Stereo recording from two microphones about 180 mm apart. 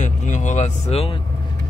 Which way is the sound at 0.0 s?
40° left (ahead or behind).